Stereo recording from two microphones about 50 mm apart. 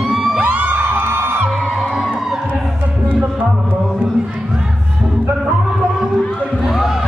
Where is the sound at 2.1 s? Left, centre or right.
Centre.